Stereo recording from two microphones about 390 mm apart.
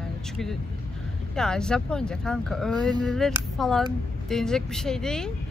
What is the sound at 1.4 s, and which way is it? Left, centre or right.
Speech, centre.